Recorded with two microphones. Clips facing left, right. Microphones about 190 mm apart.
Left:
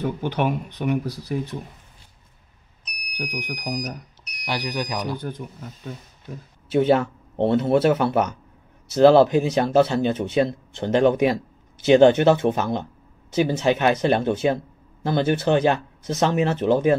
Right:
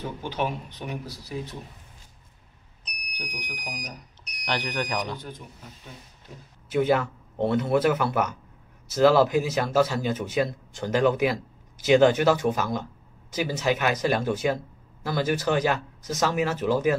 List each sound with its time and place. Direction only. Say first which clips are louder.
0.2 s speech: left 6 dB; 60° left (ahead or behind)
3.2 s speech: left 8 dB; 50° left (ahead or behind)
4.5 s speech: left 2 dB; 10° left (ahead or behind)
5.2 s speech: left 8 dB; 50° left (ahead or behind)
6.7 s speech: left 4 dB; 30° left (ahead or behind)